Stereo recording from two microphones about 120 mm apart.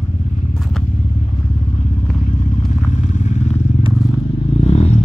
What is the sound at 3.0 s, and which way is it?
Vehicle, 80° left.